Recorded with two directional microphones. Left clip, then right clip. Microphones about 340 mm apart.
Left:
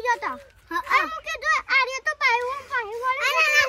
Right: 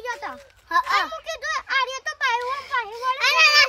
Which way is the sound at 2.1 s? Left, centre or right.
Centre.